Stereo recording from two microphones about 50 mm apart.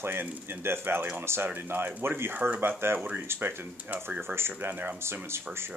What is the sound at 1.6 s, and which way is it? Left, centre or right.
Speech, right.